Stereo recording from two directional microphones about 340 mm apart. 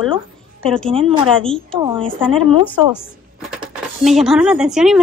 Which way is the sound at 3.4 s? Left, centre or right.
Centre.